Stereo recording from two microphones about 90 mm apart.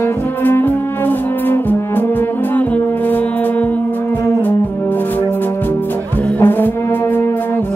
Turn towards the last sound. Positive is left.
turn(degrees=20)  # may be behind; listen again after turning